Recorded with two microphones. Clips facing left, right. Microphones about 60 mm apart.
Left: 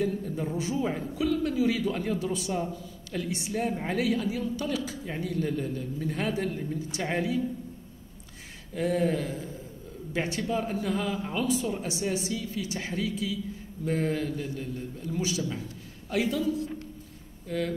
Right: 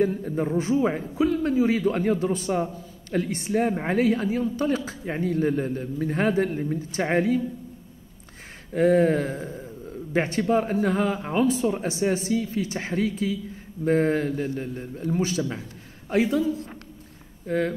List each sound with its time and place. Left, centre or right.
0.0 s a man's voice: right
8.7 s a man's voice: right